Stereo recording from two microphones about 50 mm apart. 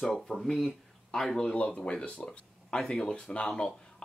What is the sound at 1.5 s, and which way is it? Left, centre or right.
Speech, left.